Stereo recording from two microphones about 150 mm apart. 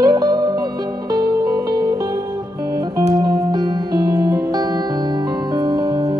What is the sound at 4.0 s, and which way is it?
Music, 25° right (ahead or behind).